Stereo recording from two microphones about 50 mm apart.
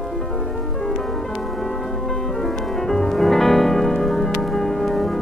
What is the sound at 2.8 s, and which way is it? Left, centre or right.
Music, centre.